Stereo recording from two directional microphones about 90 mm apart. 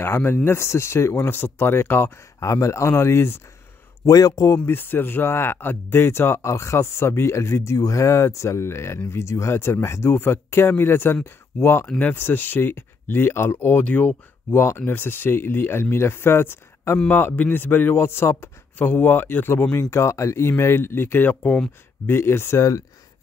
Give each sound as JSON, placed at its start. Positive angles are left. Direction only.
{"t": 0.0, "sound": "speech", "side_deg": 25}
{"t": 2.4, "sound": "speech", "side_deg": 35}
{"t": 4.0, "sound": "speech", "side_deg": 40}
{"t": 4.6, "sound": "speech", "side_deg": 25}